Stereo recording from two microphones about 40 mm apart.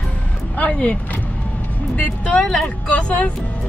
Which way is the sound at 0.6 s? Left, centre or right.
Left.